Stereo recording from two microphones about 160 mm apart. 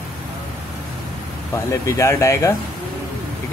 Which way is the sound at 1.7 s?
20° left (ahead or behind).